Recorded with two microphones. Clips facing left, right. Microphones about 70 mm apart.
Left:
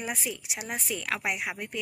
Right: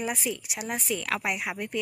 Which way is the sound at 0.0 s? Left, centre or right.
Centre.